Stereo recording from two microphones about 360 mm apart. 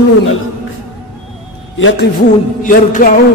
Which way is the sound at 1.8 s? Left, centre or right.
Left.